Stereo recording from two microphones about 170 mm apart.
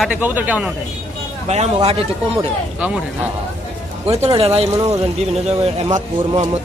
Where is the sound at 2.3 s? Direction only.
10° right (ahead or behind).